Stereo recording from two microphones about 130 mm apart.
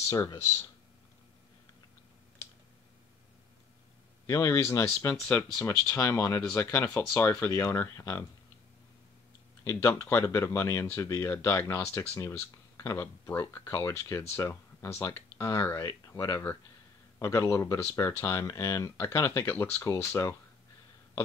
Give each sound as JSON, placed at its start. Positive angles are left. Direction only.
{"t": 0.0, "sound": "speech", "side_deg": 25}
{"t": 4.3, "sound": "speech", "side_deg": 20}
{"t": 5.5, "sound": "speech", "side_deg": 5}
{"t": 5.9, "sound": "speech", "side_deg": 20}
{"t": 9.7, "sound": "speech", "side_deg": 20}